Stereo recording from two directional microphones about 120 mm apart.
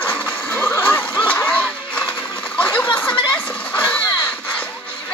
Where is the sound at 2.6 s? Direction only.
10° left (ahead or behind).